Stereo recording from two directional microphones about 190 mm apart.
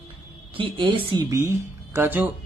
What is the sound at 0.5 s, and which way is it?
Speech, 25° right (ahead or behind).